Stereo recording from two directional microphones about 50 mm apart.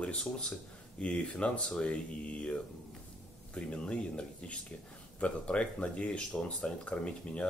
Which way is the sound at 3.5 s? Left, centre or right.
Left.